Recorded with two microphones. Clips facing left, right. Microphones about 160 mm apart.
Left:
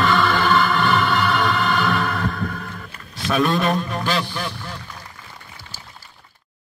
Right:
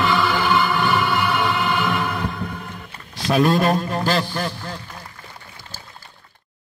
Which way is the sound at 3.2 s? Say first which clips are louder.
Right 2 dB; 35° right (ahead or behind).